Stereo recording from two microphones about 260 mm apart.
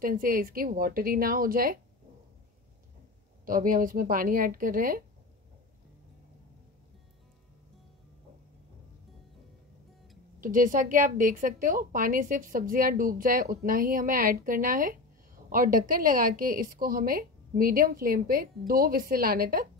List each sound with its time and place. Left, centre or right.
0.0 s a woman's voice: right
3.4 s a woman's voice: right
10.4 s a woman's voice: right